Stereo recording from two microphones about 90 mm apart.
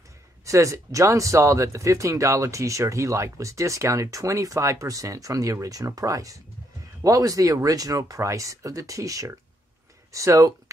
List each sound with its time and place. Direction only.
0.5 s speech: 35° right (ahead or behind)